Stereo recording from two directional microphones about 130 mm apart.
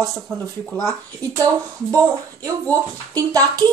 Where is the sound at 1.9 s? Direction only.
25° right (ahead or behind).